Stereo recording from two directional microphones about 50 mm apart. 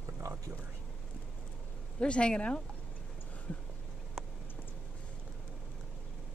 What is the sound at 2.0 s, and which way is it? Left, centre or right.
Speech, left.